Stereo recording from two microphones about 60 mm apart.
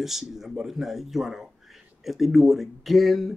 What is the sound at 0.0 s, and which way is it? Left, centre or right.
Speech, centre.